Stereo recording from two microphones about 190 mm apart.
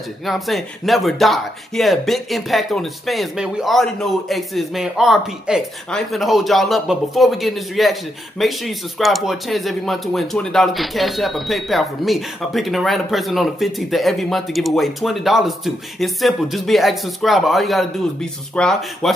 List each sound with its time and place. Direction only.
0.2 s speech: centre (ahead or behind)